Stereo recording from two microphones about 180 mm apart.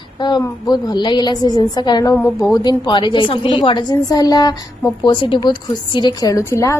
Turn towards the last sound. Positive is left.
turn(degrees=15)  # may be behind; listen again after turning